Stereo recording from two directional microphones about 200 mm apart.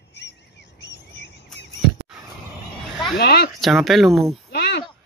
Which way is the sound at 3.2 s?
55° left (ahead or behind).